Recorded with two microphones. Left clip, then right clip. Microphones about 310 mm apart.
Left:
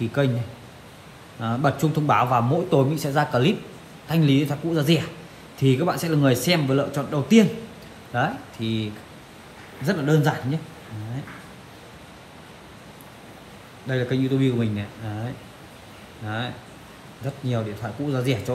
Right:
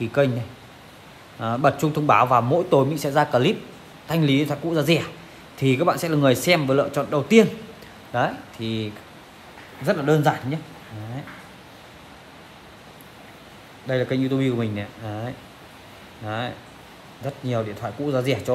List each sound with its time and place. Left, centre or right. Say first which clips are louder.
0.2 s speech: right 4 dB; right
1.4 s speech: right 3 dB; right
9.8 s speech: right 3 dB; right
13.8 s speech: right 2 dB; right
16.3 s speech: right 2 dB; right